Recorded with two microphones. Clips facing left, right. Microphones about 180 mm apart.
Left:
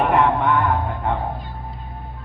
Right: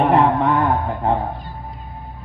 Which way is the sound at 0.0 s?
35° right (ahead or behind).